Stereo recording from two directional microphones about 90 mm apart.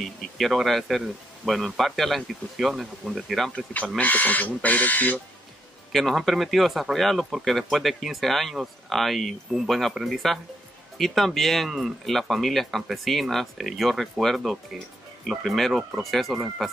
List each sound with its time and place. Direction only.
0.0 s speech: centre (ahead or behind)
3.5 s speech: 15° left (ahead or behind)
5.9 s speech: centre (ahead or behind)